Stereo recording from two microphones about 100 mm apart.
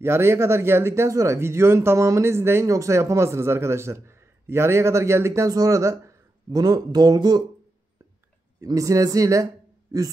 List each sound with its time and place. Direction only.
0.0 s speech: 25° right (ahead or behind); by 7.4 s 45° right (ahead or behind)
8.5 s speech: 35° right (ahead or behind)